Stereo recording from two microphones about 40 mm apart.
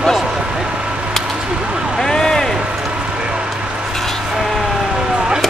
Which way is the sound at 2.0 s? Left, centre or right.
Centre.